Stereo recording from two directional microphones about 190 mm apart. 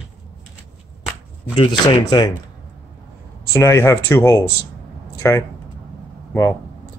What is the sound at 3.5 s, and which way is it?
Speech, 15° left (ahead or behind).